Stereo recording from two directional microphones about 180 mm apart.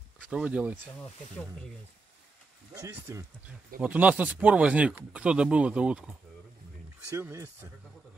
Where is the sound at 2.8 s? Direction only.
15° right (ahead or behind).